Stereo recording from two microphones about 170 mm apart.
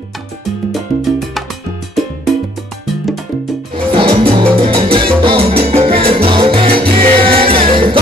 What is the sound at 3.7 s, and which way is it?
Salsa music, 30° right (ahead or behind).